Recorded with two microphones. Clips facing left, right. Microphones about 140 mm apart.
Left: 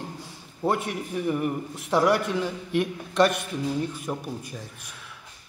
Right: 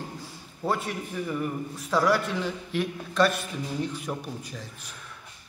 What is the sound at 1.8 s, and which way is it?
Speech, 25° left (ahead or behind).